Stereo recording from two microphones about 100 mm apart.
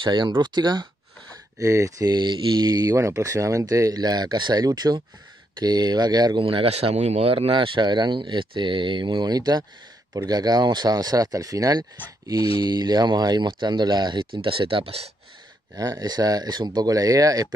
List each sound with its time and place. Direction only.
0.0 s speech: 50° right (ahead or behind)
1.6 s speech: 30° right (ahead or behind)
2.1 s speech: 50° right (ahead or behind)
6.4 s speech: 70° right (ahead or behind)
15.7 s speech: 40° right (ahead or behind)